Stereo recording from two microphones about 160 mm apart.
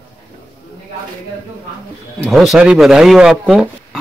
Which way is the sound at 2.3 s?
Centre (ahead or behind).